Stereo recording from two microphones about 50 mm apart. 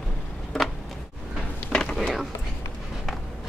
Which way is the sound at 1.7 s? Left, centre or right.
Centre.